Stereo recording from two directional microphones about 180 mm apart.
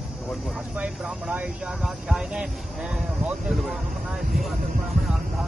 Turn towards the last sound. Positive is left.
turn(degrees=0)  # may be behind; listen again after turning